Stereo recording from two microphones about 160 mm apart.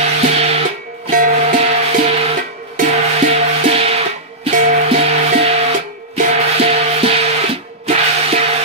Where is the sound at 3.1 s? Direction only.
40° right (ahead or behind).